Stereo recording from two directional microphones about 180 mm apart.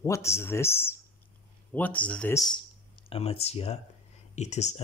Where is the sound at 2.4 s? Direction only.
25° left (ahead or behind).